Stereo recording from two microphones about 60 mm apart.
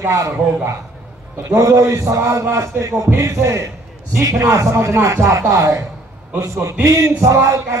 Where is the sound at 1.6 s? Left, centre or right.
Right.